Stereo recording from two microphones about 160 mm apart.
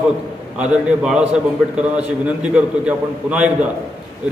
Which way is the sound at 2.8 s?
5° right (ahead or behind).